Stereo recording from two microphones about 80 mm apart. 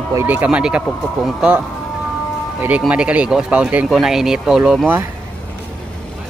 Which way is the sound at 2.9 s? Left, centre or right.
Centre.